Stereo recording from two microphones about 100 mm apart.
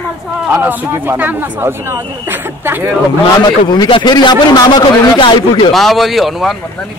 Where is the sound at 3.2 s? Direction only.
45° left (ahead or behind).